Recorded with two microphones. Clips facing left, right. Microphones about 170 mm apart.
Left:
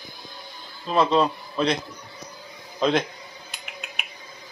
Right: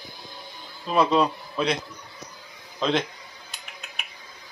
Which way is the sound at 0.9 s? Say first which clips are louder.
Left 1 dB; 5° right (ahead or behind).